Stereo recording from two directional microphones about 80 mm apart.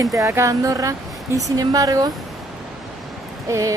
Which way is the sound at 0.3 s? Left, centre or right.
Right.